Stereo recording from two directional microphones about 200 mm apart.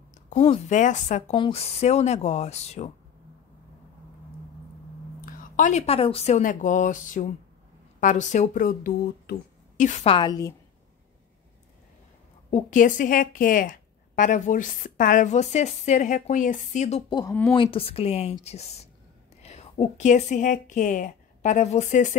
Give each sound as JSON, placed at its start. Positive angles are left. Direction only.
{"t": 0.3, "sound": "a woman's voice", "side_deg": 35}
{"t": 1.3, "sound": "a woman's voice", "side_deg": 25}
{"t": 5.2, "sound": "a woman's voice", "side_deg": 40}
{"t": 12.4, "sound": "a woman's voice", "side_deg": 40}
{"t": 17.3, "sound": "speech", "side_deg": 10}
{"t": 17.6, "sound": "a woman's voice", "side_deg": 25}